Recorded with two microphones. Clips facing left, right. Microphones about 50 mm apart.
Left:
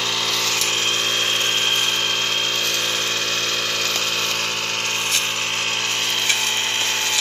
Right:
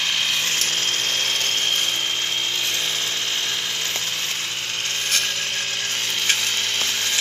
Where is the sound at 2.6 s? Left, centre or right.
Left.